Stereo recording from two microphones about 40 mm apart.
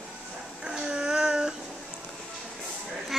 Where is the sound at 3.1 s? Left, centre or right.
Centre.